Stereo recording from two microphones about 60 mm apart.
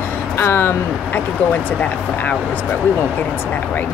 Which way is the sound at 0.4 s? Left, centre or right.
Left.